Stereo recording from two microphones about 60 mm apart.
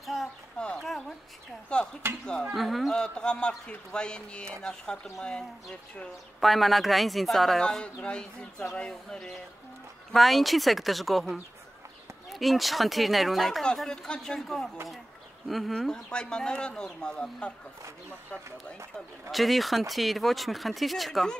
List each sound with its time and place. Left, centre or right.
0.0 s a sound: centre
0.7 s dog: centre
1.7 s a sound: centre
2.5 s speech: centre
2.9 s speech: centre
6.4 s speech: centre
7.8 s speech: centre
10.1 s speech: centre
15.9 s speech: centre
19.3 s speech: centre